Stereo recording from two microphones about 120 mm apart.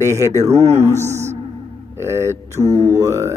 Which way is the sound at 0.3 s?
75° right (ahead or behind).